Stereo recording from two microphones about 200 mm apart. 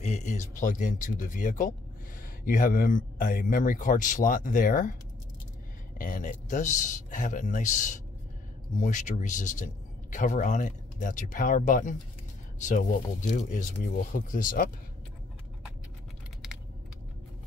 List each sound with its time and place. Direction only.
0.0 s speech: 35° left (ahead or behind)
5.9 s speech: 40° left (ahead or behind)